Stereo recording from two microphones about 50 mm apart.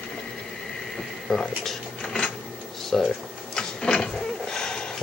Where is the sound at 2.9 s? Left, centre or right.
Centre.